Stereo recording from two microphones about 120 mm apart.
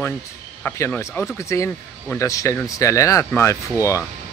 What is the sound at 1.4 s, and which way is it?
Speech, 25° left (ahead or behind).